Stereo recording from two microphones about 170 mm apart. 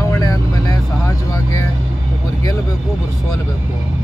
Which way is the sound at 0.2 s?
20° left (ahead or behind).